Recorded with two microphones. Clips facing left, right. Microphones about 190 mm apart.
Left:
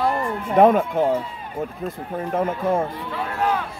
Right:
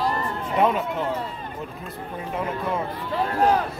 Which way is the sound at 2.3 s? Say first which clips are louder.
Left 6 dB; 45° left (ahead or behind).